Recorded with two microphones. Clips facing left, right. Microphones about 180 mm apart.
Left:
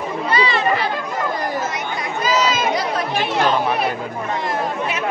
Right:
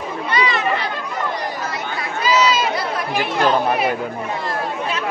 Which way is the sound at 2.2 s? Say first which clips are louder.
Right 2 dB; 50° left (ahead or behind).